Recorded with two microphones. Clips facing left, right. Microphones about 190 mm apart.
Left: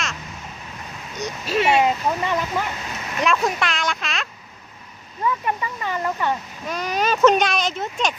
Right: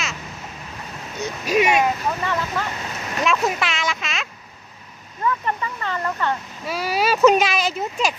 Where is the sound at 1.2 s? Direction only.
15° right (ahead or behind).